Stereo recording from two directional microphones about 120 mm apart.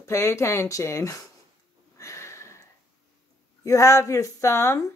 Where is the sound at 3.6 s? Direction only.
25° left (ahead or behind).